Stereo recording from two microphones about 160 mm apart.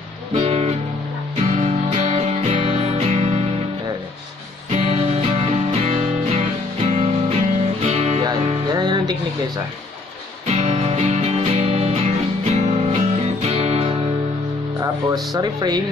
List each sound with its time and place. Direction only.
0.3 s music: 40° right (ahead or behind)
4.6 s music: 45° right (ahead or behind)
8.2 s music: 25° right (ahead or behind)
10.4 s music: 45° right (ahead or behind)
14.8 s speech: 25° right (ahead or behind)